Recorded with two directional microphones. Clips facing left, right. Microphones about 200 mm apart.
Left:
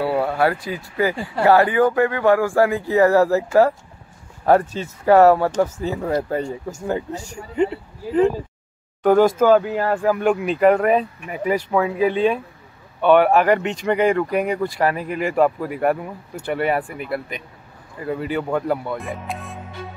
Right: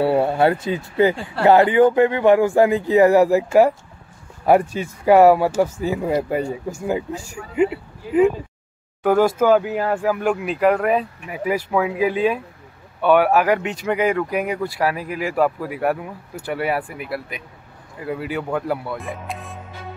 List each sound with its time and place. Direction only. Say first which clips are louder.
0.0 s speech: right 3 dB; 25° right (ahead or behind)
4.5 s speech: right 1 dB; 10° right (ahead or behind)